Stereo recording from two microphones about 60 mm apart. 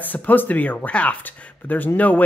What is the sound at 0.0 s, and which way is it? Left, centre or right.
Speech, left.